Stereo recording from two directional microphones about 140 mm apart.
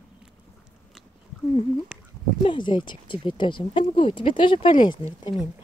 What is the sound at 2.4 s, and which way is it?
Speech, 35° left (ahead or behind).